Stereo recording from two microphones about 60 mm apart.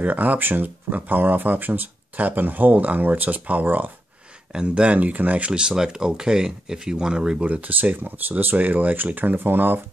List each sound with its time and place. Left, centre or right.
0.0 s speech: right
4.5 s speech: centre
5.5 s speech: centre; by 9.8 s right